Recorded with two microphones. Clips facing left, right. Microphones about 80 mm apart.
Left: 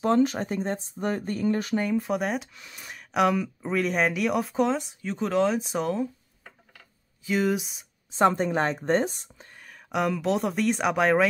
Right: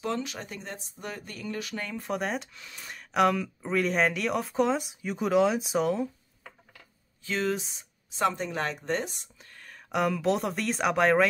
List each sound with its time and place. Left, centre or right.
0.0 s speech: left
2.0 s speech: centre
7.2 s speech: centre
8.2 s speech: left
9.7 s speech: centre